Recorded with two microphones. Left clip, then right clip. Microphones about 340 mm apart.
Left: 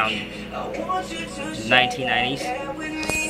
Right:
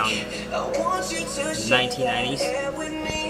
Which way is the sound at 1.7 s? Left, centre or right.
Centre.